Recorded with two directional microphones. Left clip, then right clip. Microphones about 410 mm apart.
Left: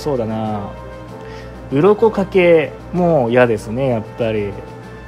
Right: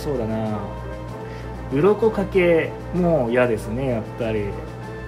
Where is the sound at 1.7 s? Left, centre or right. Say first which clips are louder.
Left 5 dB; centre.